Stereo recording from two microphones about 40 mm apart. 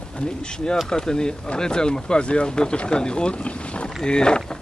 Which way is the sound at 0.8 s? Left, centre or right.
Centre.